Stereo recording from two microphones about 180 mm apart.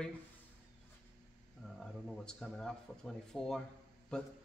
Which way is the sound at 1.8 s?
Centre (ahead or behind).